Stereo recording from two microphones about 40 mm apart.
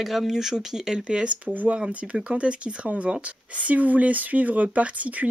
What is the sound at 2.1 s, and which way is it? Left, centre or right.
Speech, right.